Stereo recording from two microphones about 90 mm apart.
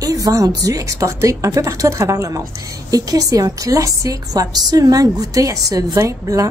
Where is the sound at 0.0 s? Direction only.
40° right (ahead or behind).